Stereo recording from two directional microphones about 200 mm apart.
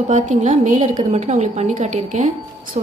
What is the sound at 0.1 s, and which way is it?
A woman's voice, 40° right (ahead or behind).